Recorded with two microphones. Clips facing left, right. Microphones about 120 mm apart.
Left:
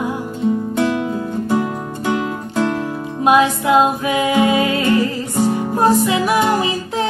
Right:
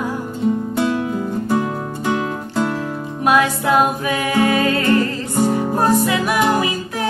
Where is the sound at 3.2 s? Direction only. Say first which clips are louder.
Left 2 dB; 20° left (ahead or behind).